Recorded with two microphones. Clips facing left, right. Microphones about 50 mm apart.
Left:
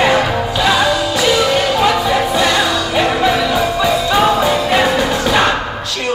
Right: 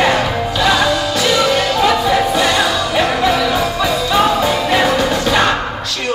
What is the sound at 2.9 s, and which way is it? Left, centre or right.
Music, centre.